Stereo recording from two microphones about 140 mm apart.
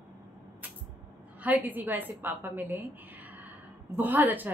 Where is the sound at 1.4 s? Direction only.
10° right (ahead or behind).